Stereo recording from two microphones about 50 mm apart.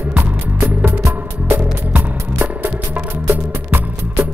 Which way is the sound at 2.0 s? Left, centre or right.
Right.